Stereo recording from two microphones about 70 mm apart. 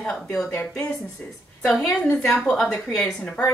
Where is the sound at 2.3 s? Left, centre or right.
Centre.